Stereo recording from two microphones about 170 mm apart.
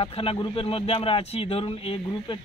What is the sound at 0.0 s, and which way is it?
Speech, 35° left (ahead or behind).